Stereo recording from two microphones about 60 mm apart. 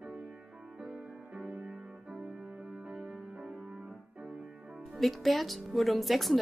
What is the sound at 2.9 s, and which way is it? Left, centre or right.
Music, centre.